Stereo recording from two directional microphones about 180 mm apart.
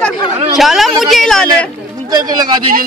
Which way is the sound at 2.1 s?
20° right (ahead or behind).